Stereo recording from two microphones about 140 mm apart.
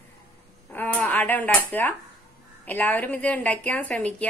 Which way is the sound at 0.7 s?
10° left (ahead or behind).